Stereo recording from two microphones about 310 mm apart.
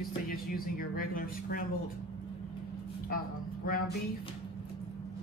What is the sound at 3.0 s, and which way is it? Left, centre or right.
Speech, left.